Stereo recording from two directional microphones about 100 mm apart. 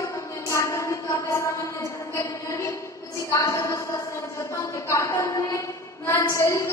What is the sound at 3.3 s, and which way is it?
A woman's voice, 30° left (ahead or behind).